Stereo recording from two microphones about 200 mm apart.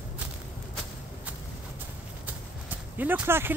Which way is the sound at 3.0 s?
10° right (ahead or behind).